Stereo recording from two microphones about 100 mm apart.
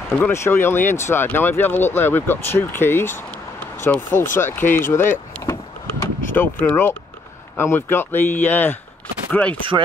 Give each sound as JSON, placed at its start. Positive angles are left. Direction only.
{"t": 0.2, "sound": "speech", "side_deg": 25}
{"t": 3.8, "sound": "power windows", "side_deg": 20}
{"t": 7.5, "sound": "speech", "side_deg": 25}
{"t": 9.3, "sound": "chopping", "side_deg": 15}